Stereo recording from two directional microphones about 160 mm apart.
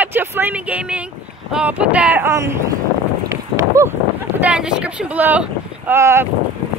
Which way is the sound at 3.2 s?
20° right (ahead or behind).